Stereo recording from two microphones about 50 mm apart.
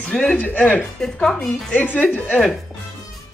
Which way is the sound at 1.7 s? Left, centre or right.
Left.